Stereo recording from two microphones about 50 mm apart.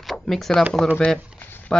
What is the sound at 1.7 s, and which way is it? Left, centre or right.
Speech, centre.